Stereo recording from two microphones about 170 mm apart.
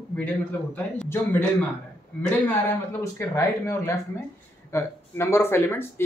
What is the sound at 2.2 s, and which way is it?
Speech, 10° left (ahead or behind).